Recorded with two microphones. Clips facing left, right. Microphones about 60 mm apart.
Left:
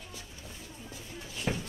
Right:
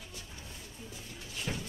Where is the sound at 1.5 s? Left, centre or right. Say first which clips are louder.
Left 5 dB; left.